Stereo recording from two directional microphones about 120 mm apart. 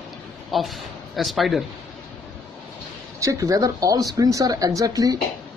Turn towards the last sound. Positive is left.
turn(degrees=-30)  # may be behind; listen again after turning